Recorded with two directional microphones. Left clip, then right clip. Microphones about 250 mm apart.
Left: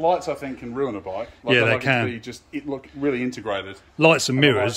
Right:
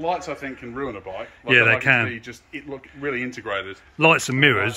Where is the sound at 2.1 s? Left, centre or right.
Left.